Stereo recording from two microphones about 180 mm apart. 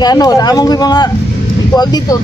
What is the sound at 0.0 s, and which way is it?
Speech, 20° left (ahead or behind).